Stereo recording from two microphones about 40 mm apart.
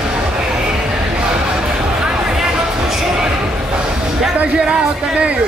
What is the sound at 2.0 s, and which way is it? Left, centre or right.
Music, centre.